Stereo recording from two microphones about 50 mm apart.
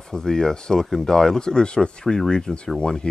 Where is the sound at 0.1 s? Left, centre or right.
Centre.